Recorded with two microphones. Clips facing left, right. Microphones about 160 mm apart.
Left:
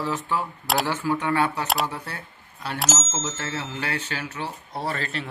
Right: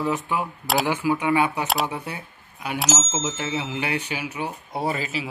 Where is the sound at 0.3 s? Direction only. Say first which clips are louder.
Right 1 dB; 15° right (ahead or behind).